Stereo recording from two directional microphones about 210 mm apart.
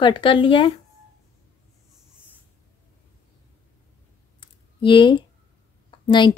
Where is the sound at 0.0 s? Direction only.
25° left (ahead or behind).